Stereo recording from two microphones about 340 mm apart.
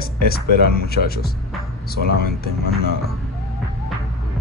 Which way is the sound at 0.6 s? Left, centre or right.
Left.